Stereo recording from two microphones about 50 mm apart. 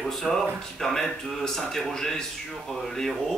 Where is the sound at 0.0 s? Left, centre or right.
Centre.